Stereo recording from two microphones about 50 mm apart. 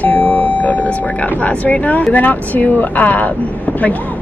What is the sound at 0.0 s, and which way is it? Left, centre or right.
Doorbell, left.